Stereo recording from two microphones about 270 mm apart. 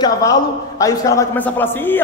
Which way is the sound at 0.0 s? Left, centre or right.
Centre.